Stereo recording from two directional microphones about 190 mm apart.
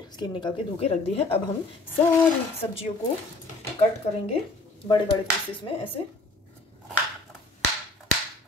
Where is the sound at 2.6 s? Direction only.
30° left (ahead or behind).